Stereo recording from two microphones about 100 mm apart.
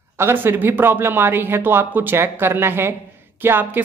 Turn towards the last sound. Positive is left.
turn(degrees=-20)  # may be behind; listen again after turning